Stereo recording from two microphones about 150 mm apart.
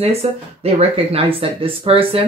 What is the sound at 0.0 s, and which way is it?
Speech, 40° right (ahead or behind).